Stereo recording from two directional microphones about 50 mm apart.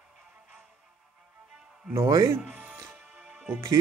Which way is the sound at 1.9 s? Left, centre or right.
Right.